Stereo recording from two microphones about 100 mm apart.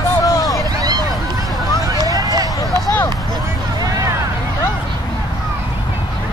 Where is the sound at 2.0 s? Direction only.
35° right (ahead or behind).